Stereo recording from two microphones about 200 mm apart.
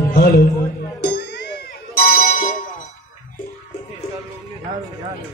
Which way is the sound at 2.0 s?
45° left (ahead or behind).